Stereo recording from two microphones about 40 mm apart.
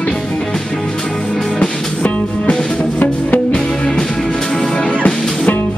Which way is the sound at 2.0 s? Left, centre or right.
Left.